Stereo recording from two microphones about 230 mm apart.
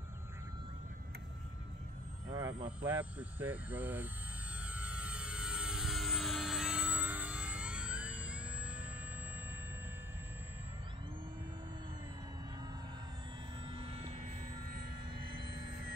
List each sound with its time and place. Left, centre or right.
2.3 s vehicle: centre
2.8 s speech: centre
4.6 s vehicle: centre
13.7 s vehicle: right